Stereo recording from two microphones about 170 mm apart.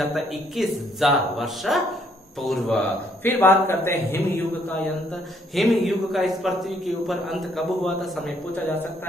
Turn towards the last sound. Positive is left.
turn(degrees=0)  # may be behind; listen again after turning